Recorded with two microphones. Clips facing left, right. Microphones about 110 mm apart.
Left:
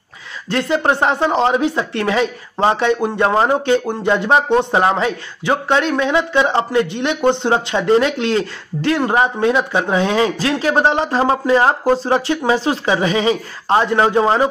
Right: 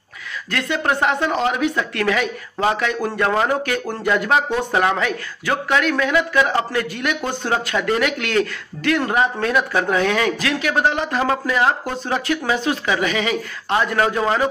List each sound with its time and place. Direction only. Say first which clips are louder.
0.5 s speech: left 5 dB; 30° left (ahead or behind)